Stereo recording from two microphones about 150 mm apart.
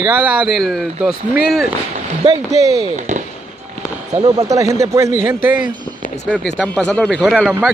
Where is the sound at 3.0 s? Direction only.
55° right (ahead or behind).